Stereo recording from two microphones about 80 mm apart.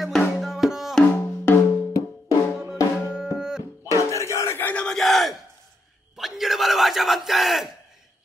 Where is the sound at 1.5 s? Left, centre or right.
Centre.